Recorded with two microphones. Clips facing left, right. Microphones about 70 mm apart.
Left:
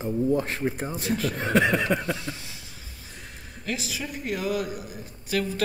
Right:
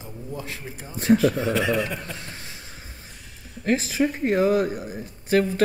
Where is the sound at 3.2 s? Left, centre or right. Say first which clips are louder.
Even; left.